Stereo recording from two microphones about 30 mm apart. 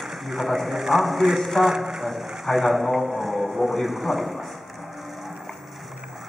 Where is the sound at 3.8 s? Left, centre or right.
Centre.